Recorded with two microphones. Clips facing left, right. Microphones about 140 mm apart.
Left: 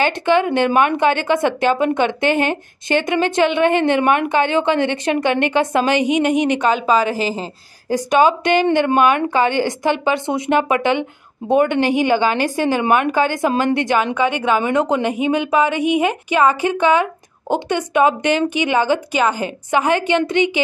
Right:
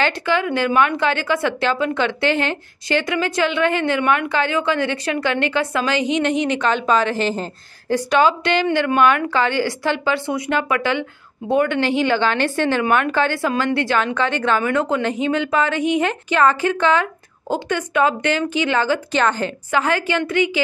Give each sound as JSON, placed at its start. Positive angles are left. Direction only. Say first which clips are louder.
{"t": 0.0, "sound": "a woman's voice", "louder": "left 4 dB", "side_deg": 20}
{"t": 7.9, "sound": "a woman's voice", "louder": "left 2 dB", "side_deg": 15}